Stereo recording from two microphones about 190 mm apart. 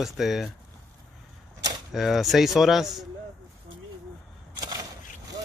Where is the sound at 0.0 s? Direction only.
Centre (ahead or behind).